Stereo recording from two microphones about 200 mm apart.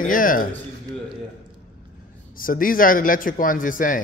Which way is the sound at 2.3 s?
45° left (ahead or behind).